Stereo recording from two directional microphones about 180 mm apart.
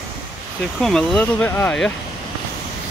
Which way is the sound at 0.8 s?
5° left (ahead or behind).